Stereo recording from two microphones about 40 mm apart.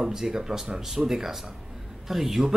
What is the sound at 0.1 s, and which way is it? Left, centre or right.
Speech, centre.